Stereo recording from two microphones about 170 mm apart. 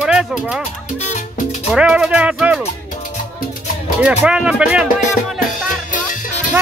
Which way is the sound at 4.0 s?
5° right (ahead or behind).